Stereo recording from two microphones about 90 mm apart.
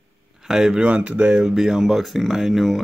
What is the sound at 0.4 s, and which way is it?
Speech, 5° right (ahead or behind).